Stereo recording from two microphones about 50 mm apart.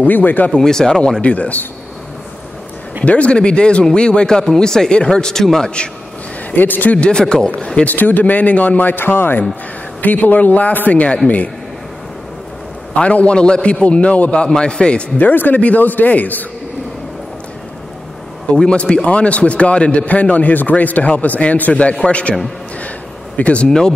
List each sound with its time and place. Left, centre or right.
0.0 s speech: left
0.5 s speech: centre
1.2 s a man's voice: left
3.1 s a man's voice: left
6.5 s speech: left
7.0 s a man's voice: centre
7.9 s speech: left
10.0 s speech: left
12.9 s a man's voice: left
15.1 s speech: left
18.5 s a man's voice: left
23.3 s a man's voice: left